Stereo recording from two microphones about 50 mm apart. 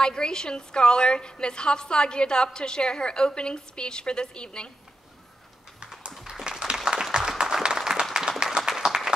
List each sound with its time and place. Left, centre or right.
0.0 s a woman's voice: centre
6.2 s applause: centre